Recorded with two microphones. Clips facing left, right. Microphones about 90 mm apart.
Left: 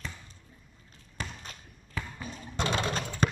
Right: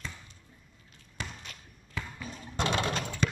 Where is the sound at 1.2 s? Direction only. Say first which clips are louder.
Left 1 dB; 40° left (ahead or behind).